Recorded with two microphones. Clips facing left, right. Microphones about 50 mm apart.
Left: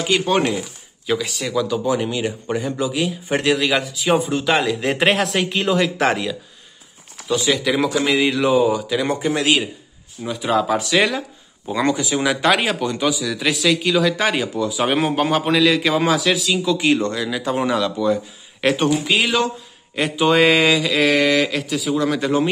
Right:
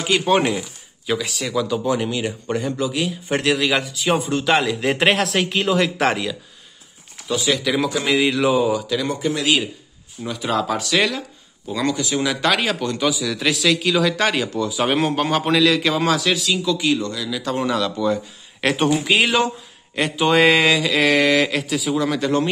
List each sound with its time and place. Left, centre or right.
0.0 s a man's voice: centre
0.4 s speech: centre
1.0 s a man's voice: centre
9.0 s speech: left
10.2 s speech: centre
10.8 s speech: centre
12.0 s a man's voice: centre
16.6 s speech: left
17.7 s a man's voice: centre